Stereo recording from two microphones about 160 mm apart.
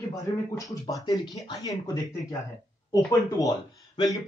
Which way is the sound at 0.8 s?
25° left (ahead or behind).